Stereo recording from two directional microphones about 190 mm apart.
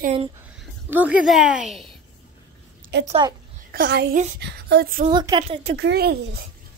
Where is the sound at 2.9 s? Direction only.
65° right (ahead or behind).